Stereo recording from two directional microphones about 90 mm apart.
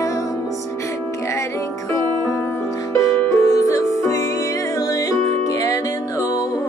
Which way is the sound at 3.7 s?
40° left (ahead or behind).